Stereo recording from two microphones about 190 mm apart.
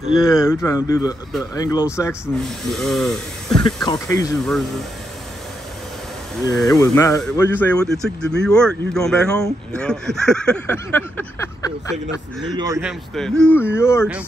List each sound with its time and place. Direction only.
0.3 s speech: 15° left (ahead or behind)
2.2 s speech: centre (ahead or behind)
3.6 s speech: 25° left (ahead or behind)
4.5 s speech: centre (ahead or behind)
6.6 s speech: 15° left (ahead or behind)
12.4 s speech: 20° right (ahead or behind)
12.8 s speech: 5° left (ahead or behind)